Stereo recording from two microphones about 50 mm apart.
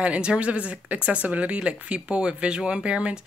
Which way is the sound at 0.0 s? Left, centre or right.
Right.